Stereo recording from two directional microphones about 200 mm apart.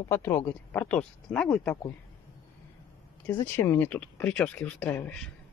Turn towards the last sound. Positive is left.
turn(degrees=5)  # may be behind; listen again after turning